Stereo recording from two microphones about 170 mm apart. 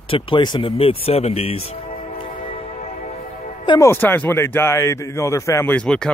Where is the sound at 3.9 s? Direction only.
10° left (ahead or behind).